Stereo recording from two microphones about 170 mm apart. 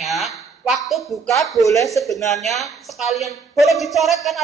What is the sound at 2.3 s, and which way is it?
A woman's voice, centre (ahead or behind).